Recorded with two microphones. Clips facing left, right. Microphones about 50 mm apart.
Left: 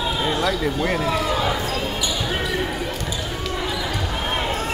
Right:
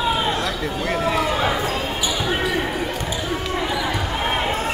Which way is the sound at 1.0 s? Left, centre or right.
Right.